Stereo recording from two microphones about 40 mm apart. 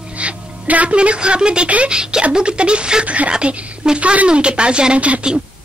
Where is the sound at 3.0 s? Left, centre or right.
Right.